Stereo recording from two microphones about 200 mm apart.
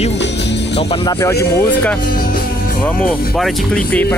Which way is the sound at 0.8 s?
30° left (ahead or behind).